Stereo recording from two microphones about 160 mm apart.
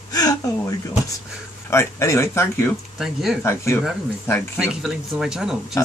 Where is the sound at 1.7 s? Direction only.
15° left (ahead or behind).